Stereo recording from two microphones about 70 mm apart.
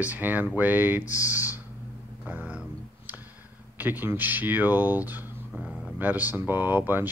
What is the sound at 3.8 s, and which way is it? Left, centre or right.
Speech, right.